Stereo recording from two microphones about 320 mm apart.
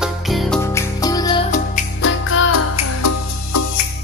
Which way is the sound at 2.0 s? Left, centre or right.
Left.